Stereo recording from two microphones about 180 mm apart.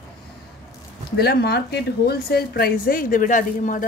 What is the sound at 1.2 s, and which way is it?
A woman's voice, 60° left (ahead or behind).